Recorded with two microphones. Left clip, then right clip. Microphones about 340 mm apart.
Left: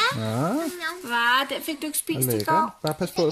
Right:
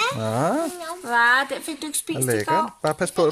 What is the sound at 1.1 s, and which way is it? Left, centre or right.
Speech, centre.